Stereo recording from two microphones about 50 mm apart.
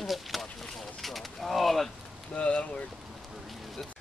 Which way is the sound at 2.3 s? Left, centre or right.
Left.